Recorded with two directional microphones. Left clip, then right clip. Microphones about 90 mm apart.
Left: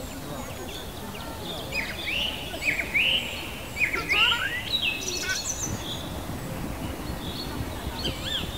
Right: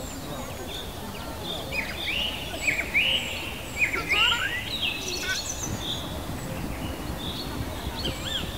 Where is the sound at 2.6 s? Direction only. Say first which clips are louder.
Even; 40° left (ahead or behind).